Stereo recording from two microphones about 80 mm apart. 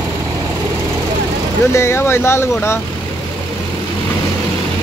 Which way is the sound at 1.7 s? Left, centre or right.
Left.